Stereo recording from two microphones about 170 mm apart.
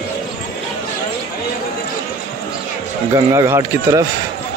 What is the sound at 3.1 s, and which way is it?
Speech, 20° right (ahead or behind).